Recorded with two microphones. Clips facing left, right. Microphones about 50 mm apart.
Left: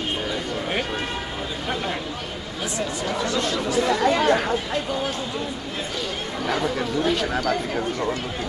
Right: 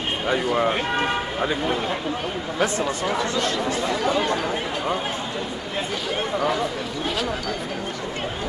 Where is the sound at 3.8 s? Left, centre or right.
Left.